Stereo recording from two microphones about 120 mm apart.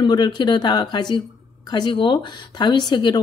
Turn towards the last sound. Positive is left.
turn(degrees=40)  # may be behind; listen again after turning